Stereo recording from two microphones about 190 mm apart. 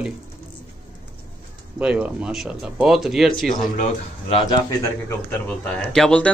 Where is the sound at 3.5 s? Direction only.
40° left (ahead or behind).